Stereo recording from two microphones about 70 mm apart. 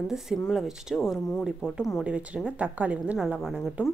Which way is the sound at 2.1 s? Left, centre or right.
Centre.